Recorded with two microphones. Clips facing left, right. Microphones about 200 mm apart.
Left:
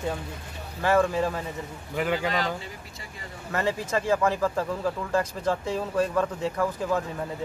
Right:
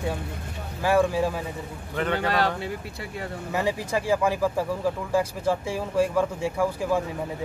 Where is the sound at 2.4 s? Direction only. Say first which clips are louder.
Right 4 dB; 60° right (ahead or behind).